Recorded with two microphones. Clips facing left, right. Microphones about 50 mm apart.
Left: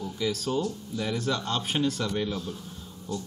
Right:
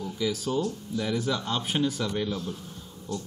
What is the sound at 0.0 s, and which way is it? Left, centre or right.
Speech, centre.